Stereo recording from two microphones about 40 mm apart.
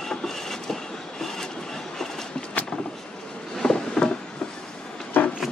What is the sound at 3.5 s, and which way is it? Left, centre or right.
Vehicle, centre.